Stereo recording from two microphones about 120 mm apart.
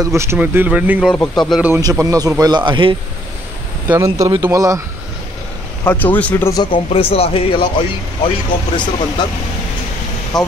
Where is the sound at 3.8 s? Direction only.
20° right (ahead or behind).